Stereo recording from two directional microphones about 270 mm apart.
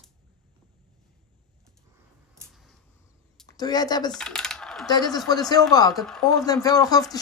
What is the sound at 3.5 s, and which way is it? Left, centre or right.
Speech, centre.